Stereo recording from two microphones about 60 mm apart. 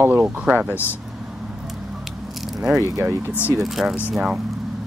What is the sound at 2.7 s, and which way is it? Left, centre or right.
Speech, right.